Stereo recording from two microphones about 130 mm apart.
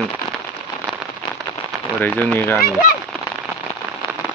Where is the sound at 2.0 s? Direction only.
15° left (ahead or behind).